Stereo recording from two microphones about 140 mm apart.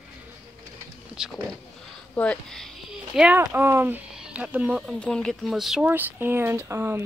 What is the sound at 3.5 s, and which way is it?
Speech, 15° right (ahead or behind).